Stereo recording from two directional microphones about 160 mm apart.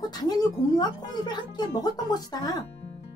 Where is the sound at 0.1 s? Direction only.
25° left (ahead or behind).